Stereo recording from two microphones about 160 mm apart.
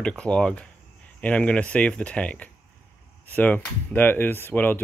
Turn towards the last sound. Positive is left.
turn(degrees=10)  # may be behind; listen again after turning